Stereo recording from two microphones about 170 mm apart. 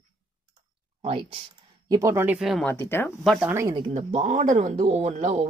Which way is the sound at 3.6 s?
30° right (ahead or behind).